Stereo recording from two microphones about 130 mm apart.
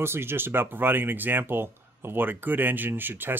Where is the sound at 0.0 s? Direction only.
20° right (ahead or behind).